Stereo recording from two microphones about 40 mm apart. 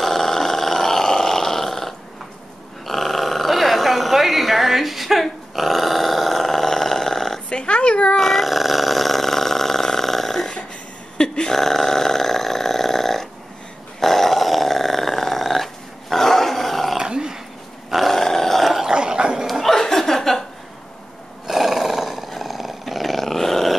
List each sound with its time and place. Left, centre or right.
0.0 s roar: centre
2.9 s a sound: centre
5.2 s dog: centre
7.4 s dog: left
8.2 s dog: centre
11.1 s a sound: left
11.5 s a sound: centre
13.9 s growling: centre
16.9 s dog: centre
18.1 s dog: centre
18.9 s dog: centre
19.4 s chuckle: centre
21.5 s roar: centre